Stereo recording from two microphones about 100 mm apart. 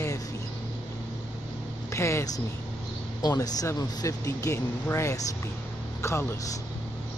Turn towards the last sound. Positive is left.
turn(degrees=25)  # may be behind; listen again after turning